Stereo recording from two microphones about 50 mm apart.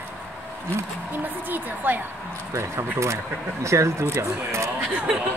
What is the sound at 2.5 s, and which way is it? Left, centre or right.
Speech, right.